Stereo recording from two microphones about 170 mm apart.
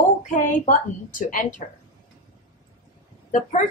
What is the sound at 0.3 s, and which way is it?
A woman's voice, 50° left (ahead or behind).